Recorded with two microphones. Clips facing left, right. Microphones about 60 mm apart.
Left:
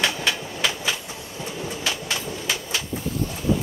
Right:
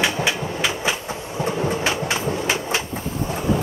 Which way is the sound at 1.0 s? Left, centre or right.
Right.